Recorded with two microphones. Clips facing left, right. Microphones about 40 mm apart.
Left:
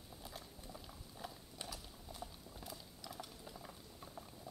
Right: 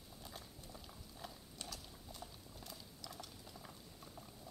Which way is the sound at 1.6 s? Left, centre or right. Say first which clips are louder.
Left 1 dB; centre.